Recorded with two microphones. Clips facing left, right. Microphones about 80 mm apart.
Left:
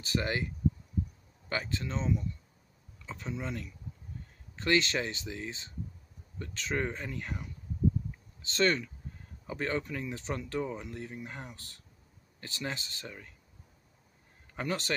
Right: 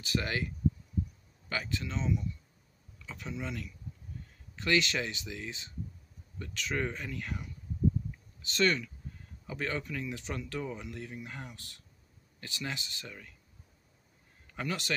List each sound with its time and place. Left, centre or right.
0.0 s speech: left
1.5 s speech: left
14.5 s speech: left